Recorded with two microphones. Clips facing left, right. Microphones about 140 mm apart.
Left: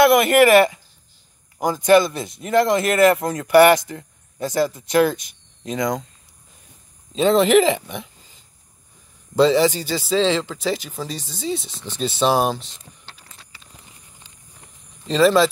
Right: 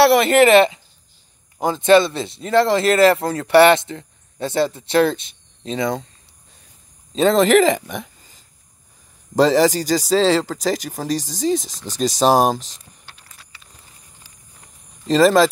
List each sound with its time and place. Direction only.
0.0 s speech: 30° right (ahead or behind)
7.2 s speech: 40° right (ahead or behind)
13.3 s a sound: 25° left (ahead or behind)
15.0 s speech: 40° right (ahead or behind)